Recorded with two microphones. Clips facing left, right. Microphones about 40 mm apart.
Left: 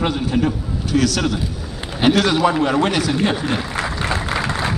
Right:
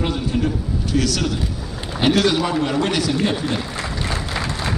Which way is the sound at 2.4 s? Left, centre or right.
Left.